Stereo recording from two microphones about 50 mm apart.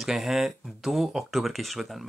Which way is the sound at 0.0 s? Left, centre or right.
Centre.